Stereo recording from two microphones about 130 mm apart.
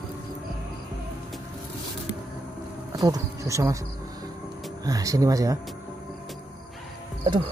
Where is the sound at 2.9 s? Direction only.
30° right (ahead or behind).